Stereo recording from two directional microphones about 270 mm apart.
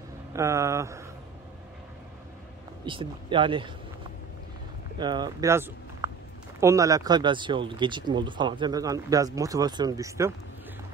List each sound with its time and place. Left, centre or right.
0.3 s speech: centre
2.8 s speech: centre
4.9 s speech: centre